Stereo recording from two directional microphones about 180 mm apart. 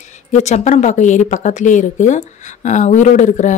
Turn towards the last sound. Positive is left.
turn(degrees=45)  # may be behind; listen again after turning